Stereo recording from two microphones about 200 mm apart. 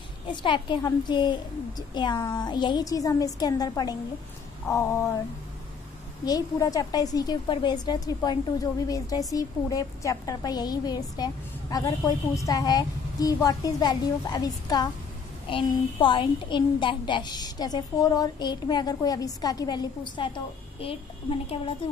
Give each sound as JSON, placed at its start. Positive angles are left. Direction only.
{"t": 0.3, "sound": "a woman's voice", "side_deg": 25}
{"t": 4.6, "sound": "a sound", "side_deg": 15}
{"t": 6.2, "sound": "a woman's voice", "side_deg": 20}